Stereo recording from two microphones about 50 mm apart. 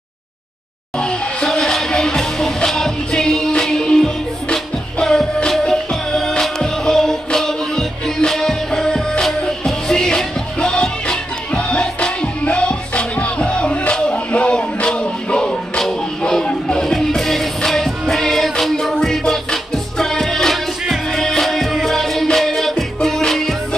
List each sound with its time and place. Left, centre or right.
0.9 s music: centre
1.5 s music: centre
16.8 s music: centre